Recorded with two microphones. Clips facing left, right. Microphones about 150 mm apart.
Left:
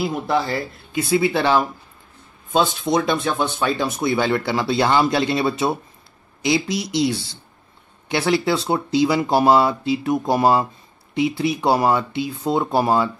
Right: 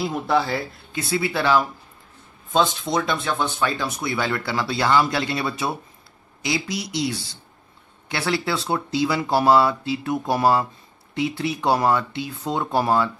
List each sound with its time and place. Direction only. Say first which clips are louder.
0.0 s speech: left 1 dB; centre (ahead or behind)
0.9 s speech: left 5 dB; 20° left (ahead or behind)
2.5 s speech: left 2 dB; 5° left (ahead or behind)
3.0 s speech: left 1 dB; 20° left (ahead or behind)